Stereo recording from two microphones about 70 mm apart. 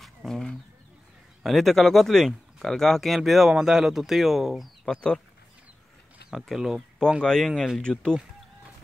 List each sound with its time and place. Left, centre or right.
0.0 s bird: centre
1.4 s speech: centre
4.9 s speech: centre
6.5 s speech: centre
7.2 s speech: centre